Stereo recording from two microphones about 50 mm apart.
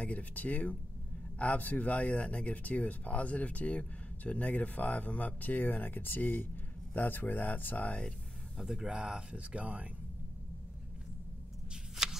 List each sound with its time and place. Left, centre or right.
0.0 s speech: left
8.5 s speech: centre
8.8 s speech: centre
11.7 s a sound: centre